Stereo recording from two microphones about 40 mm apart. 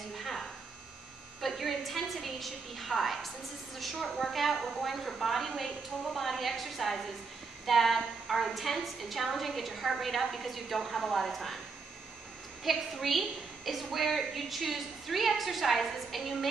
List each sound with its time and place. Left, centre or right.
0.1 s a sound: centre
1.4 s a woman's voice: centre
12.6 s a woman's voice: centre